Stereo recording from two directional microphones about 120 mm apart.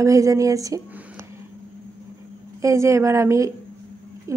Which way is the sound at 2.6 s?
25° right (ahead or behind).